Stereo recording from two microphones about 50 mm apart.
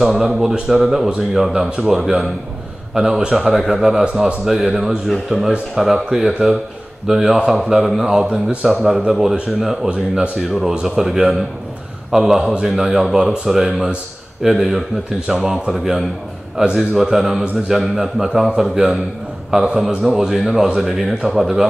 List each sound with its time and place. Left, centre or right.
0.0 s speech: centre
3.3 s speech: centre
5.8 s speech: centre
9.8 s speech: centre
10.4 s speech: centre
21.2 s speech: centre